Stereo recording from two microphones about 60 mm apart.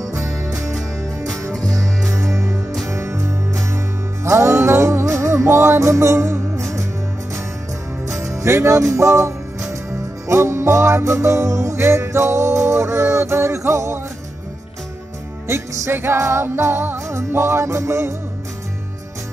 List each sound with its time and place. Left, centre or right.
0.0 s music: right
1.7 s music: centre
2.1 s music: right
8.2 s music: right
15.4 s music: right